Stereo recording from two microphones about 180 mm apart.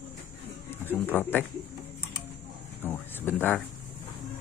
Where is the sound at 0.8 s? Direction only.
10° left (ahead or behind).